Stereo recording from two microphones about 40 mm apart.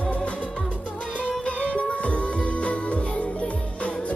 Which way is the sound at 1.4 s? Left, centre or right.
Left.